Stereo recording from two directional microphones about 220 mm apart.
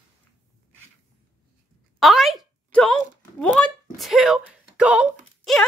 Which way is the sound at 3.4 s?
5° left (ahead or behind).